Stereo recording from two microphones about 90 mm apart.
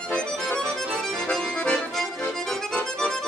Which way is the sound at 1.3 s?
10° left (ahead or behind).